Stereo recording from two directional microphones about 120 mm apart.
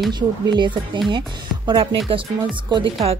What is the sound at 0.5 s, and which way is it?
Speech, 40° right (ahead or behind).